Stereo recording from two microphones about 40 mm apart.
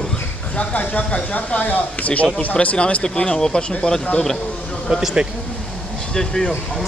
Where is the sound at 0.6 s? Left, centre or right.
Left.